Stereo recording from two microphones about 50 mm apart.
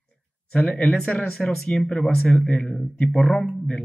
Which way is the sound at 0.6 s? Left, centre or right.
Left.